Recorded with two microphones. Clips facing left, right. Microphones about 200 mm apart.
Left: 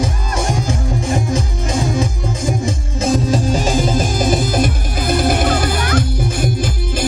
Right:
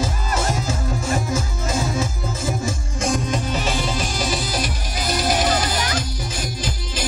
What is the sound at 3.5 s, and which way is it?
Music, 45° left (ahead or behind).